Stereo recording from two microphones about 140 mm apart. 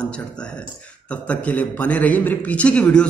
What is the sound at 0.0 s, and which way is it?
A man's voice, 5° left (ahead or behind).